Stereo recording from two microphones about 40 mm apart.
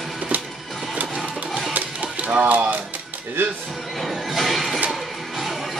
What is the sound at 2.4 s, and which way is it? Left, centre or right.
Speech, right.